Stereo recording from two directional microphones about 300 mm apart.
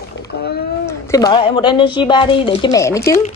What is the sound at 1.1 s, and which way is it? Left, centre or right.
A woman's voice, centre.